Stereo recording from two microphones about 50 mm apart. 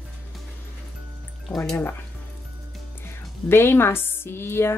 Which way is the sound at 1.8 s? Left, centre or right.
Left.